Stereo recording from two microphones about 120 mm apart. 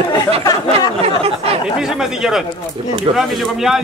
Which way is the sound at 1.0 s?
55° right (ahead or behind).